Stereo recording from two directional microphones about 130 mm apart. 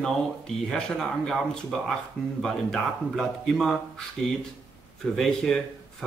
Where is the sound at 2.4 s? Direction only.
5° left (ahead or behind).